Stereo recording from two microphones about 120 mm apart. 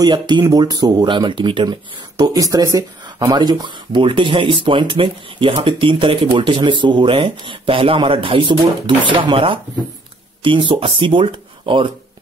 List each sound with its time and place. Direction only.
0.0 s speech: 35° right (ahead or behind)